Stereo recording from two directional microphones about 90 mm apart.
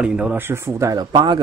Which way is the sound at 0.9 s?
55° right (ahead or behind).